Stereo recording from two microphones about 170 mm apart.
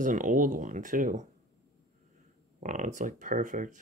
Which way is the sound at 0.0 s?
50° right (ahead or behind).